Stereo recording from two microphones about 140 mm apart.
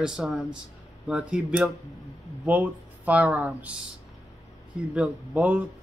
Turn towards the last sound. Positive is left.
turn(degrees=-10)  # may be behind; listen again after turning